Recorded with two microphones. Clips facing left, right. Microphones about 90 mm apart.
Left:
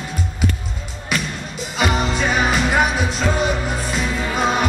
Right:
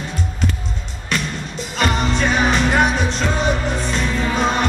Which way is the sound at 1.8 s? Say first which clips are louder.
Right 1 dB; 5° left (ahead or behind).